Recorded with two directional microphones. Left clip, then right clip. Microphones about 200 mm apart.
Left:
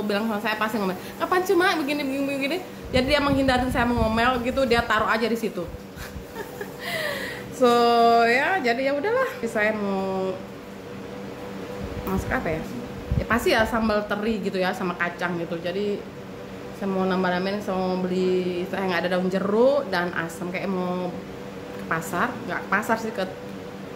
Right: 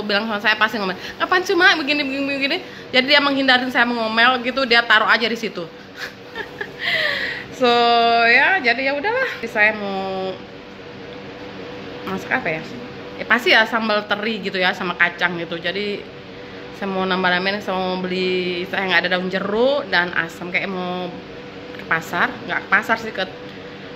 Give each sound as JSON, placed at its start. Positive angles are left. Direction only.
{"t": 0.1, "sound": "a woman's voice", "side_deg": 5}
{"t": 6.8, "sound": "a sound", "side_deg": 10}
{"t": 7.6, "sound": "a woman's voice", "side_deg": 15}
{"t": 12.1, "sound": "a woman's voice", "side_deg": 5}